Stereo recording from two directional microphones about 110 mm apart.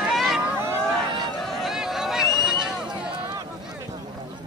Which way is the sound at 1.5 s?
Centre (ahead or behind).